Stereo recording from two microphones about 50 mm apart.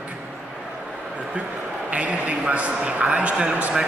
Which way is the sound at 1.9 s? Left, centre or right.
Right.